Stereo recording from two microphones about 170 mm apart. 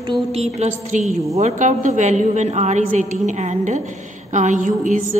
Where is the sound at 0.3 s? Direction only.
40° right (ahead or behind).